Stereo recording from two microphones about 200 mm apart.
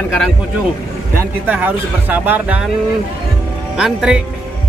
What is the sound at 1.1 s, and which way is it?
Speech, 10° right (ahead or behind).